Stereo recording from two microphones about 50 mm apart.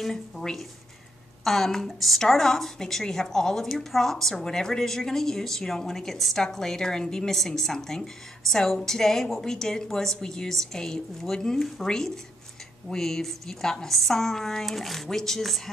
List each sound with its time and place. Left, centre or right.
0.0 s a woman's voice: centre